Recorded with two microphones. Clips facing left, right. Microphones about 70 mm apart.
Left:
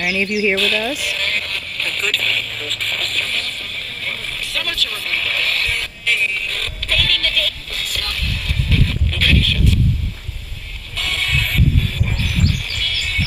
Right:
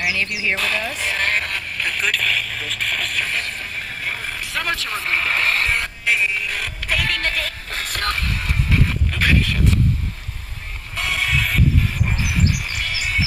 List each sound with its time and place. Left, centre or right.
0.6 s speech: right
0.9 s radio: right; by 3.3 s centre
3.3 s vehicle: right
11.0 s music: centre